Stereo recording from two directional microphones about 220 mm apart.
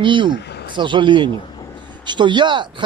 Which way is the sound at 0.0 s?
20° right (ahead or behind).